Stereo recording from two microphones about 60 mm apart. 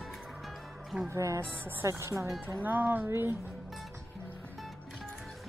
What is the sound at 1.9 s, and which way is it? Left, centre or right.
Speech, right.